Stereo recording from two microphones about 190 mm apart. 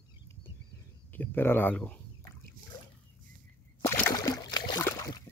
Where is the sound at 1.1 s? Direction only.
10° left (ahead or behind).